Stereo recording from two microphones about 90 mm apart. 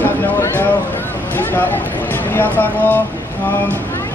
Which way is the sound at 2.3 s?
20° left (ahead or behind).